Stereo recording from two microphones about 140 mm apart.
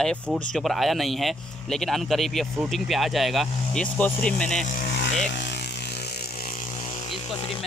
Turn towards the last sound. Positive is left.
turn(degrees=40)  # may be behind; listen again after turning